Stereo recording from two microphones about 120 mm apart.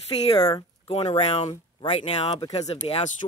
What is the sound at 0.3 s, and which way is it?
Speech, 35° left (ahead or behind).